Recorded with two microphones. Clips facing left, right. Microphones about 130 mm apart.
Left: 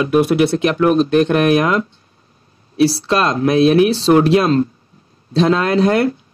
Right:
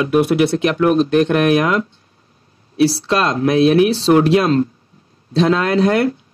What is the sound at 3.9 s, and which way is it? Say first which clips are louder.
Speech: left 1 dB; 30° left (ahead or behind).